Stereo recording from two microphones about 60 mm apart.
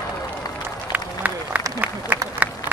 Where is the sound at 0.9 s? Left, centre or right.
Right.